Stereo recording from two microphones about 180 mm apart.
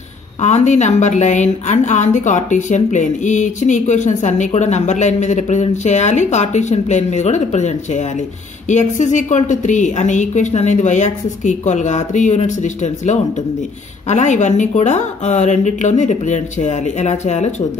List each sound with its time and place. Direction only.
0.4 s a woman's voice: 40° left (ahead or behind)